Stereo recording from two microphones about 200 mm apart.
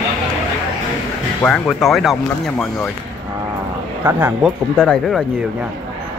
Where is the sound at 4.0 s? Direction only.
10° right (ahead or behind).